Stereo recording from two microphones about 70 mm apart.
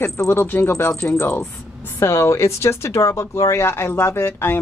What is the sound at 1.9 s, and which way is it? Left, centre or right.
Speech, left.